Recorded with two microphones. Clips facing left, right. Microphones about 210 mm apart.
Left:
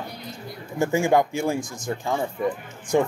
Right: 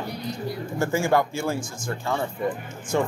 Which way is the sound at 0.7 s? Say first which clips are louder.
Left 3 dB; 15° left (ahead or behind).